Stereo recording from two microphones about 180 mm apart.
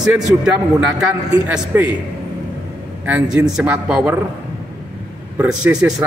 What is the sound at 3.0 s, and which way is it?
A man's voice, 5° right (ahead or behind).